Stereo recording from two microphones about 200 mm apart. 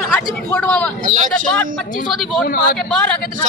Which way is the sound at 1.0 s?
40° right (ahead or behind).